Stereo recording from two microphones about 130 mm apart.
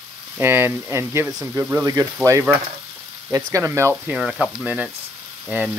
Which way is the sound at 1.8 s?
25° right (ahead or behind).